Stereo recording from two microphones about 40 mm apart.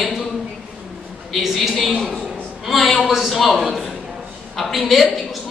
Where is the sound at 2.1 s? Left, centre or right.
Centre.